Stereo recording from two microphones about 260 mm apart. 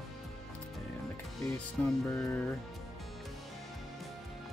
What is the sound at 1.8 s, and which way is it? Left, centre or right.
Music, centre.